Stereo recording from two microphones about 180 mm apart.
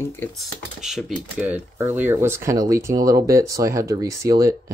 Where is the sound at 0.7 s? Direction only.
Centre (ahead or behind).